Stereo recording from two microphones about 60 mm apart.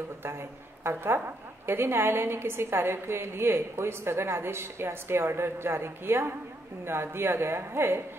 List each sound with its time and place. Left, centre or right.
0.2 s a woman's voice: right